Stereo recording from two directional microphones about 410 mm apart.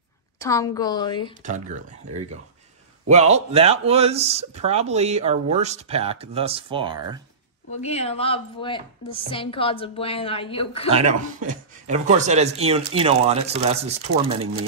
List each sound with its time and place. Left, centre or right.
0.4 s a woman's voice: centre
1.4 s speech: centre
7.7 s a woman's voice: centre
10.9 s speech: centre